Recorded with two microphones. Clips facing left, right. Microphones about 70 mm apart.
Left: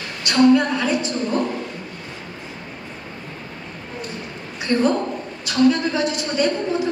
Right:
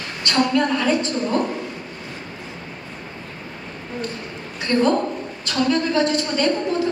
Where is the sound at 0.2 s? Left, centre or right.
Centre.